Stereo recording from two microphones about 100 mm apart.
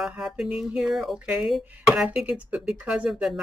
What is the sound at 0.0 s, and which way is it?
Speech, 5° right (ahead or behind).